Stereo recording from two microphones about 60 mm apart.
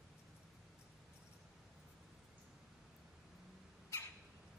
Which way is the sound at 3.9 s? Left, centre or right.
Left.